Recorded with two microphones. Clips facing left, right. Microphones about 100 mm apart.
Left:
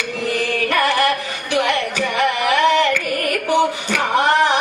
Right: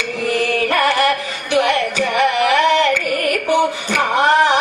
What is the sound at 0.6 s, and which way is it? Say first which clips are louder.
Music: left 1 dB; 30° right (ahead or behind).